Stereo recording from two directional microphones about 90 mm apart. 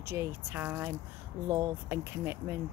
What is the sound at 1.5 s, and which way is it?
Speech, 30° right (ahead or behind).